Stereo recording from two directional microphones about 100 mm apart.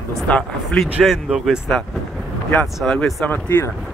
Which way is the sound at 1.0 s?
Centre (ahead or behind).